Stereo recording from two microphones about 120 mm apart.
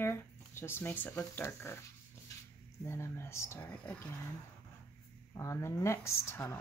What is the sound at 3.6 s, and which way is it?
Speech, 10° left (ahead or behind).